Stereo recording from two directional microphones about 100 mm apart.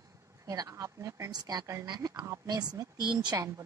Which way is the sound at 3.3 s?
35° right (ahead or behind).